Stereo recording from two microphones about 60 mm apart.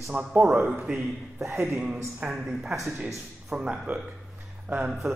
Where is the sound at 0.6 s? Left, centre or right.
Centre.